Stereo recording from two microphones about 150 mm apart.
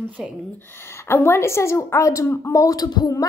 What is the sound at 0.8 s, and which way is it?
A woman's voice, 15° left (ahead or behind).